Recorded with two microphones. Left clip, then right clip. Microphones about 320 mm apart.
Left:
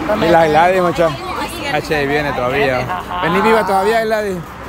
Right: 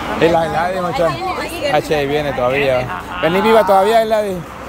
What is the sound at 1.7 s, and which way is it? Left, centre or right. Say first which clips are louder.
Speech: right 1 dB; centre.